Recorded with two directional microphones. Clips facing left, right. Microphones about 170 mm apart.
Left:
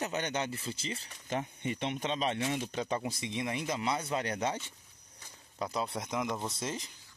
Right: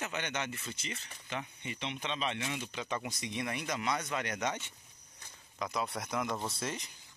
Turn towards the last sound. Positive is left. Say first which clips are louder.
# left 1 dB
turn(degrees=25)  # may be behind; listen again after turning